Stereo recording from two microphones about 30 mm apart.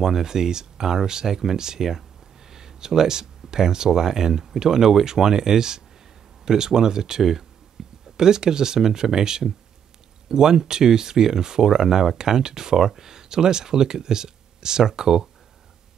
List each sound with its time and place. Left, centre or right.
0.0 s speech: centre
7.8 s a sound: centre
8.2 s speech: right